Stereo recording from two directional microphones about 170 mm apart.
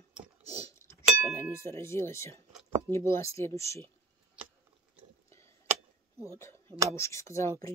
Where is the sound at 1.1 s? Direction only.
15° right (ahead or behind).